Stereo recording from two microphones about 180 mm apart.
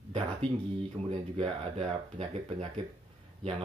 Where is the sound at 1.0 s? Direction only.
30° right (ahead or behind).